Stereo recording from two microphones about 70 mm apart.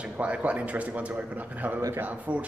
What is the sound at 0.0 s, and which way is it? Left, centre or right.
A man's voice, centre.